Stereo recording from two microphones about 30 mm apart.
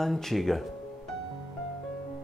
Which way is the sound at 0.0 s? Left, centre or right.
Centre.